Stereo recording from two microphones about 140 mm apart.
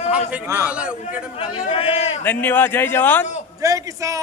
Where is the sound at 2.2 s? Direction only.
15° left (ahead or behind).